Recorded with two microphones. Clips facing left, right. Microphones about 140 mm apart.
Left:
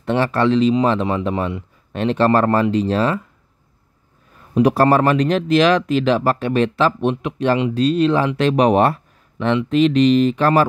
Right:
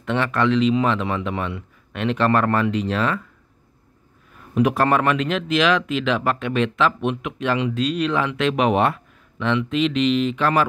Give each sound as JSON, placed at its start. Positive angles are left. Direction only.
{"t": 0.0, "sound": "speech", "side_deg": 35}
{"t": 4.6, "sound": "speech", "side_deg": 35}